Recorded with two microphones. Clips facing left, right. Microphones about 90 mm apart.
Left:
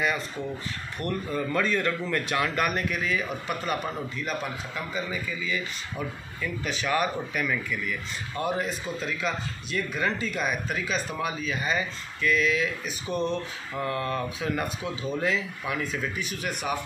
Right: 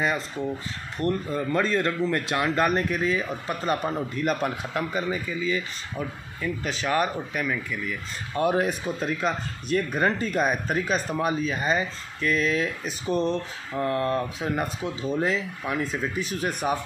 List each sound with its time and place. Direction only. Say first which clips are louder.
0.9 s speech: right 4 dB; 25° right (ahead or behind)
4.2 s a man's voice: right 8 dB; 55° right (ahead or behind)
5.1 s speech: right 4 dB; 35° right (ahead or behind)
6.6 s speech: right 1 dB; 35° right (ahead or behind)
7.4 s speech: even; 20° right (ahead or behind)
8.4 s speech: right 6 dB; 55° right (ahead or behind); by 16.7 s 35° right (ahead or behind)